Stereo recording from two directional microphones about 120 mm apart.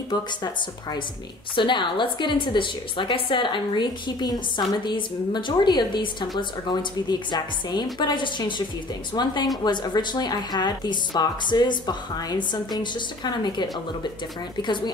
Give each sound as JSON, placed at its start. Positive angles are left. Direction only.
{"t": 0.1, "sound": "a woman's voice", "side_deg": 35}
{"t": 1.5, "sound": "a woman's voice", "side_deg": 40}